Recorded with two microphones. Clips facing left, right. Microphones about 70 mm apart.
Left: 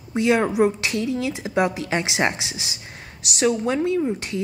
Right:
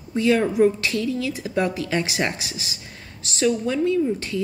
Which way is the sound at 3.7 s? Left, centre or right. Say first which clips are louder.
Even; left.